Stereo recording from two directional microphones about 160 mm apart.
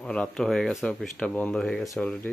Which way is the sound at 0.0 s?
5° left (ahead or behind).